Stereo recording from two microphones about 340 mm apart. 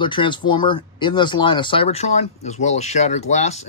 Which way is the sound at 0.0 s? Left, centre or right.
Centre.